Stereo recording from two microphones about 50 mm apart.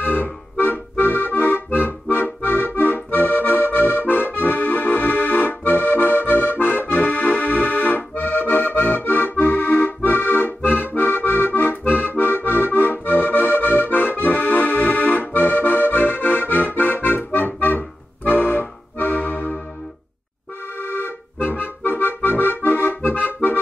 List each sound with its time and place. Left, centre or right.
0.0 s accordion: left
20.8 s accordion: left